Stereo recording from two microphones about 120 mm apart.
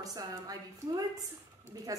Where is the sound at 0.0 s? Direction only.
30° right (ahead or behind).